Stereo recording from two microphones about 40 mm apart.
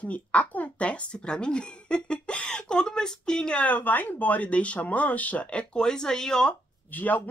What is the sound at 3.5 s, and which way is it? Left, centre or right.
Speech, left.